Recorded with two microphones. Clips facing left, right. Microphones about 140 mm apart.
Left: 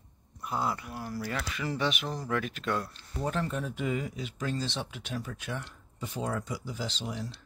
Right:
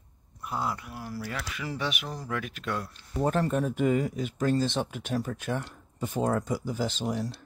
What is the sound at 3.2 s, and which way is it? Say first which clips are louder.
Speech: right 6 dB; 50° right (ahead or behind).